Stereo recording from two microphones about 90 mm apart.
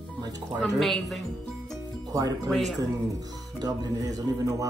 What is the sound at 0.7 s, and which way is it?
Speech, 5° left (ahead or behind).